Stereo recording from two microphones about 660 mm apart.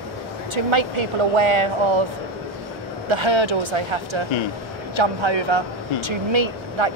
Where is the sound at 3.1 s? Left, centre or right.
Right.